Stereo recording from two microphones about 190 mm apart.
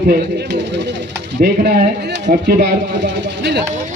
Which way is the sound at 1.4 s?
55° right (ahead or behind).